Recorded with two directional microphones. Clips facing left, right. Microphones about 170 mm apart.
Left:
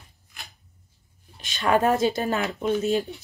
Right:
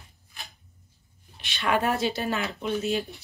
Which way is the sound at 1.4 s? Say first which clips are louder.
Left 4 dB; 40° left (ahead or behind).